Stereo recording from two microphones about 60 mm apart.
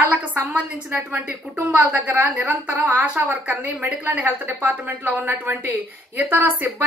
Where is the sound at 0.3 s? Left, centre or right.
Right.